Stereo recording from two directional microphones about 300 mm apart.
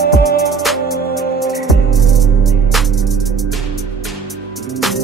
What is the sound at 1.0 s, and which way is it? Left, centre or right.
Music, left.